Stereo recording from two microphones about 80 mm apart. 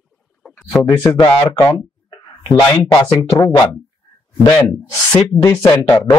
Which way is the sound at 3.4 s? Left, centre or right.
Left.